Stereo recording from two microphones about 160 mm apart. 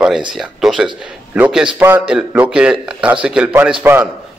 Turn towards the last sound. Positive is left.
turn(degrees=-10)  # may be behind; listen again after turning